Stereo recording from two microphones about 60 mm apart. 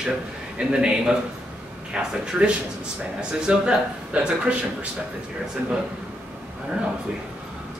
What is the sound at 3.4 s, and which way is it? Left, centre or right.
Speech, centre.